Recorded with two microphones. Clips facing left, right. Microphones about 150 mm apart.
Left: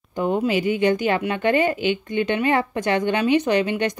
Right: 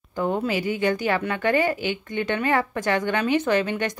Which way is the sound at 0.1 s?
20° left (ahead or behind).